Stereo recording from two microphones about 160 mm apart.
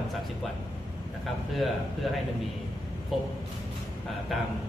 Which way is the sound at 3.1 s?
Centre (ahead or behind).